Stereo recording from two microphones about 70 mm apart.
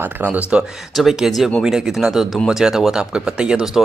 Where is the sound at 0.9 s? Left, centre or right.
Centre.